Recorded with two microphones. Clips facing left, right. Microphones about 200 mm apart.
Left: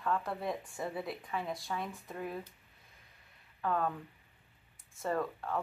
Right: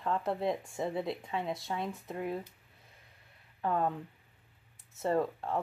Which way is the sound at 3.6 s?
25° right (ahead or behind).